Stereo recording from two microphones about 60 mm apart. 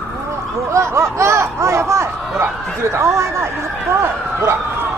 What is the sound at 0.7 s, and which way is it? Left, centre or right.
Speech, right.